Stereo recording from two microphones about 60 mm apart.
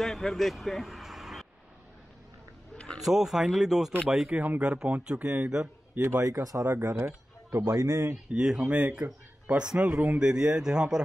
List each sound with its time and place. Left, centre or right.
0.0 s vehicle: centre
3.0 s speech: centre
4.3 s speech: right
5.9 s a man's voice: right
6.4 s speech: right
7.0 s speech: right
8.1 s speech: right